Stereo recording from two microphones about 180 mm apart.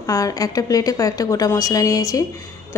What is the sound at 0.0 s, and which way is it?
A woman's voice, 20° left (ahead or behind).